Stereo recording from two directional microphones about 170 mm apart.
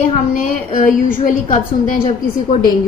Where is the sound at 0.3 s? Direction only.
50° left (ahead or behind).